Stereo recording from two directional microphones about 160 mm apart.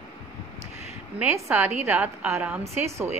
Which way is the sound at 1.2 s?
15° right (ahead or behind).